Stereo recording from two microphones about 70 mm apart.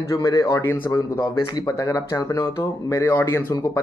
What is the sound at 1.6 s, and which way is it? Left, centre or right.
Speech, left.